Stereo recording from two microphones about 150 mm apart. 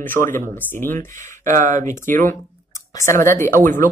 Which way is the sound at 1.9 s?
15° left (ahead or behind).